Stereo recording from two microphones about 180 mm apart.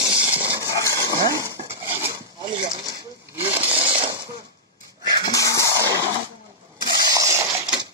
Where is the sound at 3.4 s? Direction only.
30° right (ahead or behind).